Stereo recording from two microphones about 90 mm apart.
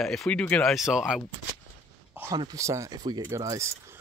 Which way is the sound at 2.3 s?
50° right (ahead or behind).